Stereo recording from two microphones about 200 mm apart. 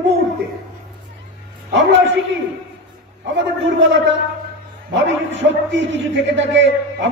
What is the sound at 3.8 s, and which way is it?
A man's voice, 65° right (ahead or behind).